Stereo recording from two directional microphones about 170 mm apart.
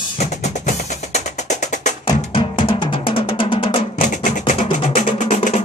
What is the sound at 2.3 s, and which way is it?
Drum, 30° left (ahead or behind).